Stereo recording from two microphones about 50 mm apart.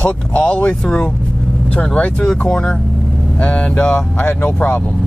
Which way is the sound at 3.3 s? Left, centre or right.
Left.